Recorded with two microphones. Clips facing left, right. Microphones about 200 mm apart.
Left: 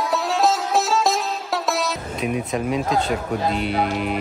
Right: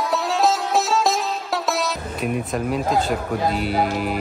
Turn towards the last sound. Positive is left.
turn(degrees=0)  # may be behind; listen again after turning